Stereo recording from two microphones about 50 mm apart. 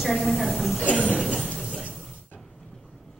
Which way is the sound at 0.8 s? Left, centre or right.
Left.